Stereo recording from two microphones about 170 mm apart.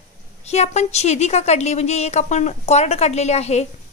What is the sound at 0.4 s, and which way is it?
A woman's voice, 40° left (ahead or behind).